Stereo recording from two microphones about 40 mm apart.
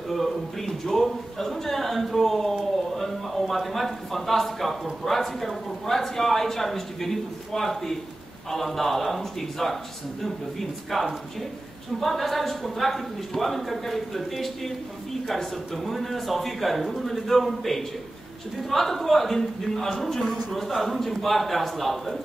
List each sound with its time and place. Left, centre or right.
0.1 s speech: centre
2.7 s a sound: centre
5.0 s speech: centre
10.9 s speech: centre